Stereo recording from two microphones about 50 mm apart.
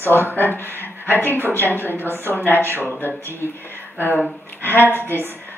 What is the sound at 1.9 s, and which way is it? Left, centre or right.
Speech, right.